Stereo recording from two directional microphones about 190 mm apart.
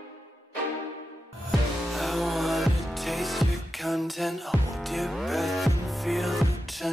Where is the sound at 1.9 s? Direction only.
Centre (ahead or behind).